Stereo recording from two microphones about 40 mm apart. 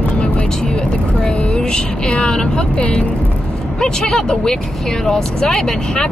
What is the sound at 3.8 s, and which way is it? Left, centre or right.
Speech, centre.